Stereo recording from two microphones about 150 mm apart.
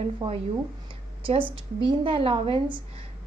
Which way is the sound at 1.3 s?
35° right (ahead or behind).